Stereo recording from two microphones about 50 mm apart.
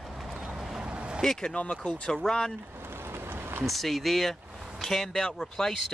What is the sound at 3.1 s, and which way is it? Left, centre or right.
Run, right.